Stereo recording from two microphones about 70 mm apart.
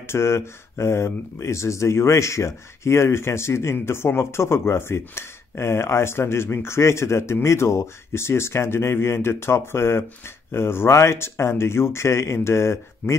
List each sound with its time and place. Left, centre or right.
0.1 s speech: left